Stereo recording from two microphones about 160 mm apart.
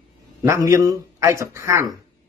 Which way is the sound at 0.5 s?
20° right (ahead or behind).